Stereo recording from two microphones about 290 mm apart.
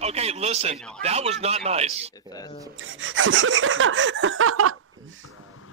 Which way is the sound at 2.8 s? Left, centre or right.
Right.